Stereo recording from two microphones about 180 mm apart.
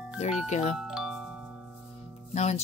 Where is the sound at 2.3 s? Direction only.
40° left (ahead or behind).